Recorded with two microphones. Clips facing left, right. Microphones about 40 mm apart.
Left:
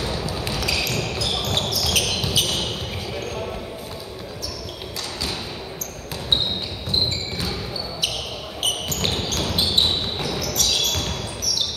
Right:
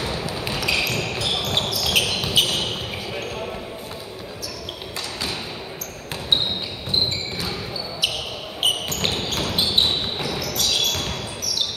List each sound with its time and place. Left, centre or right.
0.0 s ping: centre
0.7 s a sound: right
1.4 s basketball bounce: centre
8.6 s basketball bounce: centre